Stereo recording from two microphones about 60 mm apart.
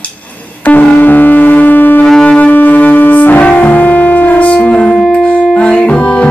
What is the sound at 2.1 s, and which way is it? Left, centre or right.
Music, centre.